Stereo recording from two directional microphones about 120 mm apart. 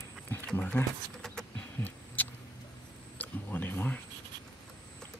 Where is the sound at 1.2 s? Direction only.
10° left (ahead or behind).